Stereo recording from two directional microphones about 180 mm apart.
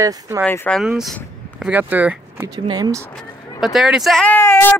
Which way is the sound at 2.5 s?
20° right (ahead or behind).